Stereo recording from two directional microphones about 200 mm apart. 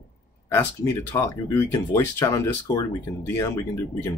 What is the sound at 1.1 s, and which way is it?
Speech, 15° left (ahead or behind).